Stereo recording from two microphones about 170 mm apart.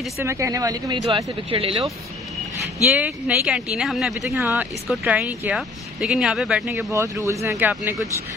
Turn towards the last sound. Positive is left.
turn(degrees=-10)  # may be behind; listen again after turning